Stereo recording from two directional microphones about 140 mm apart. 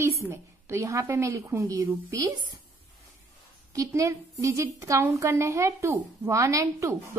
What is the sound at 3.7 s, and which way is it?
A woman's voice, 20° right (ahead or behind).